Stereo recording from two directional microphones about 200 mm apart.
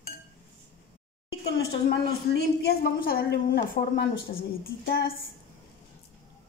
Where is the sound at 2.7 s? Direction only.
50° left (ahead or behind).